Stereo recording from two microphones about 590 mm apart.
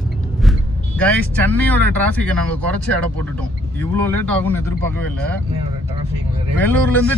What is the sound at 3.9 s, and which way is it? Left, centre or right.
Speech, centre.